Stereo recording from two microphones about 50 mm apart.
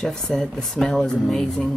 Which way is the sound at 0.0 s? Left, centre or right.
Centre.